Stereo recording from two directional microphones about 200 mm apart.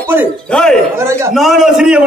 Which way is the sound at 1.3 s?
Centre (ahead or behind).